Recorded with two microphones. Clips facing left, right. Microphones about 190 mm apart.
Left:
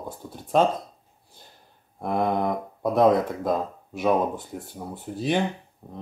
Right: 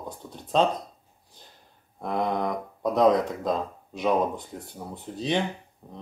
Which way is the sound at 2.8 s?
5° left (ahead or behind).